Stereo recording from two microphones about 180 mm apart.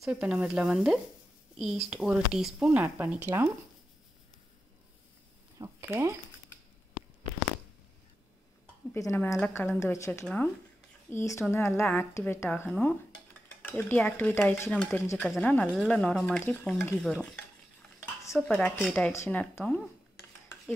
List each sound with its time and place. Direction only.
0.0 s speech: 5° right (ahead or behind)
5.6 s speech: 15° right (ahead or behind)
8.9 s a woman's voice: 15° left (ahead or behind)
18.3 s a woman's voice: 5° left (ahead or behind)